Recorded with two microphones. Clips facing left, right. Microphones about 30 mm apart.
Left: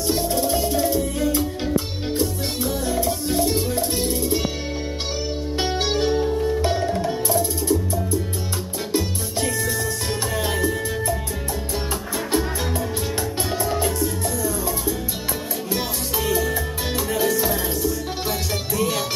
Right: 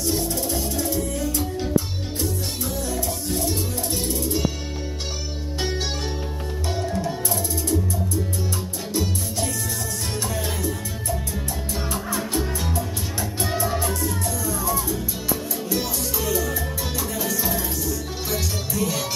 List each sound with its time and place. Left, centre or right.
0.0 s music: left
2.9 s music: left
5.6 s music: left
7.2 s music: centre
10.3 s music: left
13.6 s music: centre
13.8 s music: centre
15.7 s music: left
17.3 s music: centre